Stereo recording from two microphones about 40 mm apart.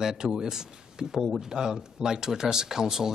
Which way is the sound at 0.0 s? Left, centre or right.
Centre.